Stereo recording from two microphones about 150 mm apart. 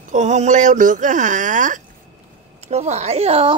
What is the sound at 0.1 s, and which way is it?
Speech, 50° right (ahead or behind).